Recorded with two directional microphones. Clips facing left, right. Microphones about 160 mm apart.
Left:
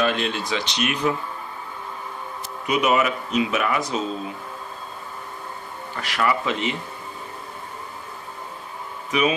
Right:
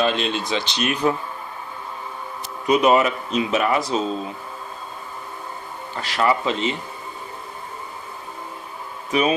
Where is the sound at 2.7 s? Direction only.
30° right (ahead or behind).